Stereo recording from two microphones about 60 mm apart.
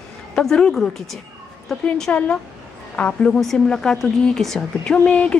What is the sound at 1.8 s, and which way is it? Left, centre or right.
Speech, centre.